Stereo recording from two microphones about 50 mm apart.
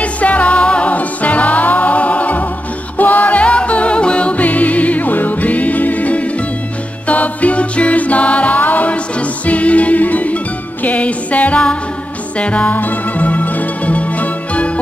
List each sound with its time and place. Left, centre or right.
0.0 s music: left